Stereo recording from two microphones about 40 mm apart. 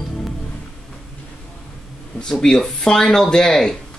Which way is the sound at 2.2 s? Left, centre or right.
Centre.